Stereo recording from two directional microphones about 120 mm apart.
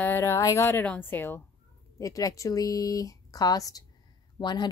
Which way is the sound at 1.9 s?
30° left (ahead or behind).